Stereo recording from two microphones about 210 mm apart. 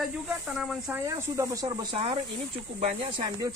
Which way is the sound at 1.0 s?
15° right (ahead or behind).